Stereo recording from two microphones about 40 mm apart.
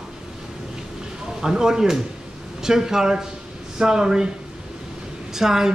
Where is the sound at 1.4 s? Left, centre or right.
Centre.